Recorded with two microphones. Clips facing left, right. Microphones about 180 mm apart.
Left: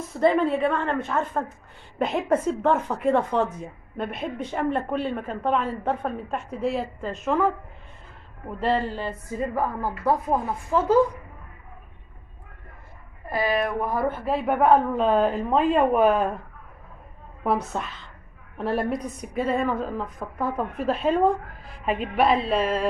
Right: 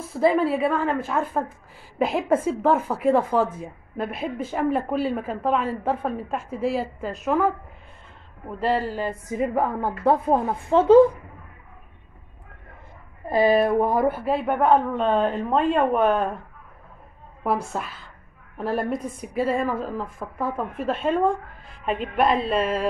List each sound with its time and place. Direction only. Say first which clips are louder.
0.1 s a man's voice: right 1 dB; 5° right (ahead or behind); by 11.1 s 25° right (ahead or behind)
13.3 s a man's voice: right 6 dB; 25° right (ahead or behind); by 16.4 s 5° left (ahead or behind)
17.7 s a woman's voice: even; 5° right (ahead or behind)